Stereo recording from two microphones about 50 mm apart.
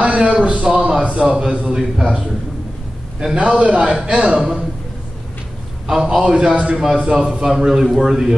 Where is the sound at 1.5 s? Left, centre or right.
Right.